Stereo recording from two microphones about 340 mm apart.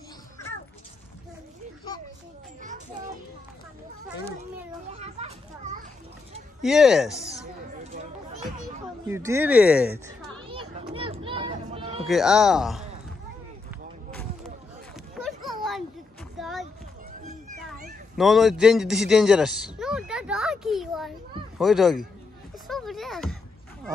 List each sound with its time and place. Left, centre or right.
4.9 s children playing: centre
6.6 s speech: centre
9.0 s speech: centre
10.5 s a sound: centre
12.1 s speech: centre
15.2 s children playing: centre
16.3 s a sound: centre
17.6 s cat: centre
21.5 s speech: centre
22.7 s a sound: centre